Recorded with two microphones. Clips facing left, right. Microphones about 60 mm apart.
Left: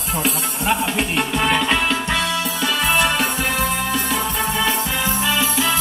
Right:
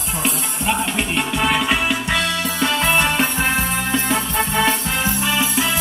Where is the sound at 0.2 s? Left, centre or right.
Centre.